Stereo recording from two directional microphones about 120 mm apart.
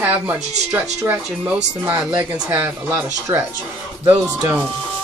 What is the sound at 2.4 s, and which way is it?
Speech, 25° right (ahead or behind).